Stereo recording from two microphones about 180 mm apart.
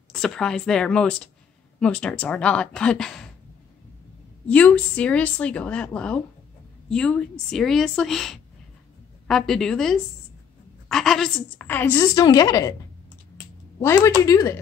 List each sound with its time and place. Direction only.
0.1 s speech: 5° left (ahead or behind)
4.5 s a woman's voice: 5° left (ahead or behind)
13.7 s a woman's voice: 15° left (ahead or behind)